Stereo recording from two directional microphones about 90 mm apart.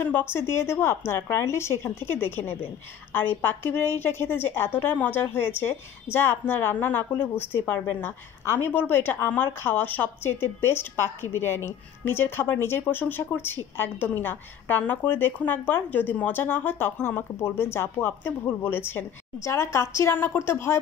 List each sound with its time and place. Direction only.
0.0 s a woman's voice: 25° left (ahead or behind)